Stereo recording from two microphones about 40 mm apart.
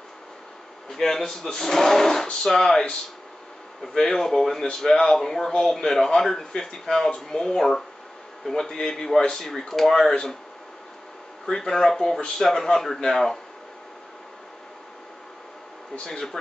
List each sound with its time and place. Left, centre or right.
0.8 s speech: centre
3.8 s speech: centre
11.4 s speech: centre
16.0 s speech: centre